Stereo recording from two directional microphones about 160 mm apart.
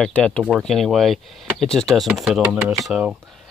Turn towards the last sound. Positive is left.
turn(degrees=0)  # may be behind; listen again after turning